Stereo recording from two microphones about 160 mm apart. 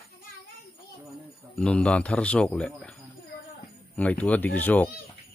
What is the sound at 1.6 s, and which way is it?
Speech, 5° left (ahead or behind).